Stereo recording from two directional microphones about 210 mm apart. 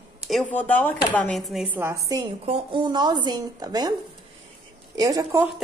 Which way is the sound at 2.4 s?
25° right (ahead or behind).